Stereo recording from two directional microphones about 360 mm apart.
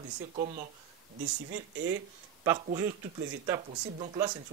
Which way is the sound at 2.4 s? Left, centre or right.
Centre.